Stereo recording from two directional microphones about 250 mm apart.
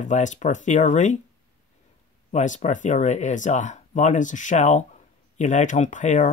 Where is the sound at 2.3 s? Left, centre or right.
Left.